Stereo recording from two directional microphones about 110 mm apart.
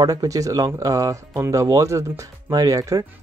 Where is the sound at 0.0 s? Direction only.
35° right (ahead or behind).